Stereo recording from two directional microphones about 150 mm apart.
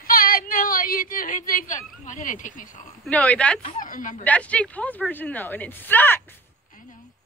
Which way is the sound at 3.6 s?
60° left (ahead or behind).